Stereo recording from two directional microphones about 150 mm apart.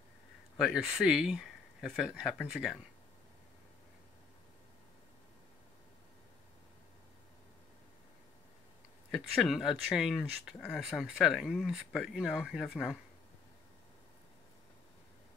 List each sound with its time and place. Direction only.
0.6 s speech: 5° right (ahead or behind)
9.1 s speech: centre (ahead or behind)